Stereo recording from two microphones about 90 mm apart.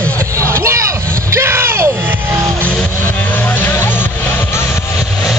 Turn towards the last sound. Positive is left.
turn(degrees=25)  # may be behind; listen again after turning